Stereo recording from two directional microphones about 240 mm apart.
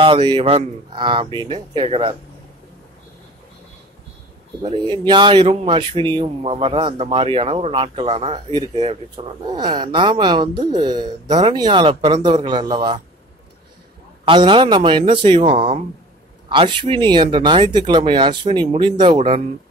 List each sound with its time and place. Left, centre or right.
0.0 s speech: right
4.6 s speech: right
14.2 s speech: right